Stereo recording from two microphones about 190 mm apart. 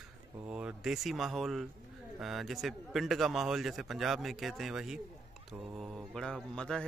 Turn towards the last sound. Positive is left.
turn(degrees=5)  # may be behind; listen again after turning